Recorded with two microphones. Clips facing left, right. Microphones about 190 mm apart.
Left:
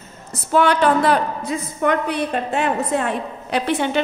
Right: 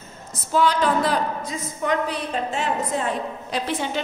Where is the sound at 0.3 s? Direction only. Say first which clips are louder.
Left 4 dB; 65° left (ahead or behind).